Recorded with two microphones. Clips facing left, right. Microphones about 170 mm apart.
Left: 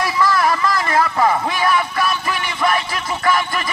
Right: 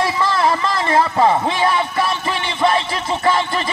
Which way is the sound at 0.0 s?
25° right (ahead or behind).